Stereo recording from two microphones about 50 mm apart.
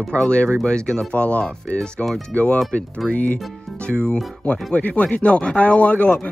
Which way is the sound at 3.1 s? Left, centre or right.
Left.